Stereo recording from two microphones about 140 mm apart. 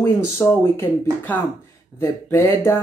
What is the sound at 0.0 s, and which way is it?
Speech, 20° left (ahead or behind).